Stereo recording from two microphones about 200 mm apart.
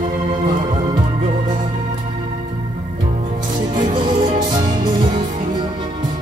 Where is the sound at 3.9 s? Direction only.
25° right (ahead or behind).